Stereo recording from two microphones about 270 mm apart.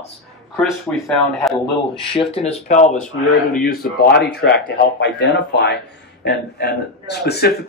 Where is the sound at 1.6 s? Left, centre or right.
Centre.